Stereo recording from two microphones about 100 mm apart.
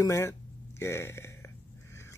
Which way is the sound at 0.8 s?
25° left (ahead or behind).